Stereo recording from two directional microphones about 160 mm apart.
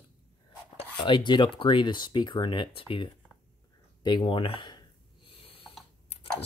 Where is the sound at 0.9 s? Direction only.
30° left (ahead or behind).